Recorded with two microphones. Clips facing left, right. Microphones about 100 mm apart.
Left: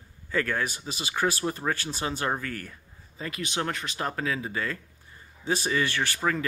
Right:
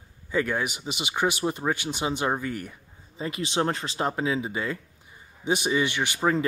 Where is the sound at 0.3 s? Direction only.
15° right (ahead or behind).